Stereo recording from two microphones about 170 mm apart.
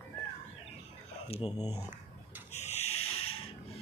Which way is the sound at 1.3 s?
35° left (ahead or behind).